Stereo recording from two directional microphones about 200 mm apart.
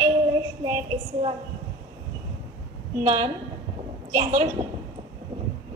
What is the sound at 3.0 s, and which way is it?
A woman's voice, 30° right (ahead or behind).